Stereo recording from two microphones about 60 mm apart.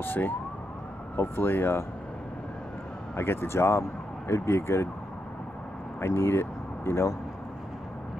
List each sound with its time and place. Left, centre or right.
0.0 s speech: left
3.2 s speech: left
5.9 s speech: left